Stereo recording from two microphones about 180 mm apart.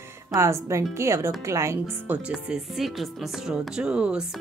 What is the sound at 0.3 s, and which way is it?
Speech, 15° right (ahead or behind).